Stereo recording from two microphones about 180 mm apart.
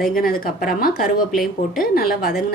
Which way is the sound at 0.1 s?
55° left (ahead or behind).